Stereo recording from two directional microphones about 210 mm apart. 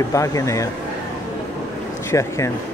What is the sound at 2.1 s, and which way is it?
Speech, 15° left (ahead or behind).